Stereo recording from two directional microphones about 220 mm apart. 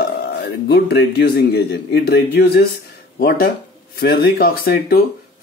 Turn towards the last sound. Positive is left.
turn(degrees=45)  # may be behind; listen again after turning